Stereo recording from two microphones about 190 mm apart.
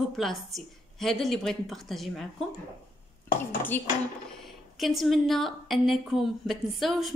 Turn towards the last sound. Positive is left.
turn(degrees=0)  # may be behind; listen again after turning